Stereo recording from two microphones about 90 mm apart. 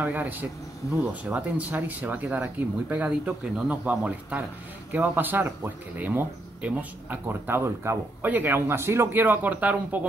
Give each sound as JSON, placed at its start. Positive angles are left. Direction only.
{"t": 0.0, "sound": "speech", "side_deg": -20}